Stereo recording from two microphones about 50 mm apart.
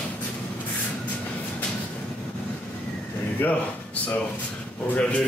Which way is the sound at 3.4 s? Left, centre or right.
Left.